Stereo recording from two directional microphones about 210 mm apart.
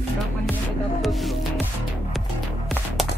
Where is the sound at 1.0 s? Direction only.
Centre (ahead or behind).